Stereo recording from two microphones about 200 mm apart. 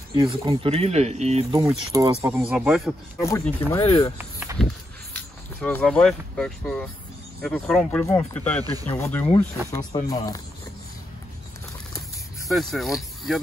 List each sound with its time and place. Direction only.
0.1 s speech: 20° right (ahead or behind)
1.9 s speech: 20° right (ahead or behind)
2.2 s speech: 5° right (ahead or behind)
3.2 s speech: 15° left (ahead or behind)
4.2 s snake: 10° right (ahead or behind)
5.1 s speech: 5° left (ahead or behind)
12.4 s speech: centre (ahead or behind)